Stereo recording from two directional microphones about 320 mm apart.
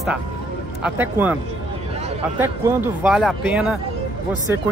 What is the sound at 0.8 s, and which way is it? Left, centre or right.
Speech, centre.